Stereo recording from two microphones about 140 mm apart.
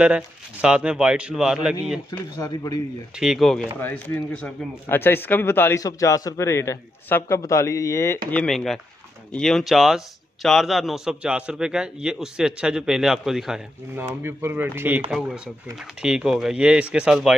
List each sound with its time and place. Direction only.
0.0 s a man's voice: 10° right (ahead or behind)
2.0 s a man's voice: 25° left (ahead or behind)
3.2 s a man's voice: centre (ahead or behind); by 8.2 s 20° left (ahead or behind)
8.3 s a man's voice: 5° left (ahead or behind)
13.9 s a man's voice: 15° right (ahead or behind)
15.0 s a man's voice: 5° right (ahead or behind)